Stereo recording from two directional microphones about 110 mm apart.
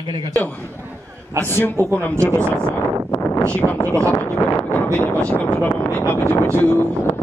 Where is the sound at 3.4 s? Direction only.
10° left (ahead or behind).